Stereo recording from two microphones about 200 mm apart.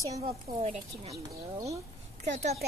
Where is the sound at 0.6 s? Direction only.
30° right (ahead or behind).